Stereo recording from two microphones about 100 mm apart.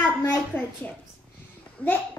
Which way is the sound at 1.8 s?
15° left (ahead or behind).